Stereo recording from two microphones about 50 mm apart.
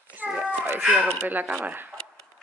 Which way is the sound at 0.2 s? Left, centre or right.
Right.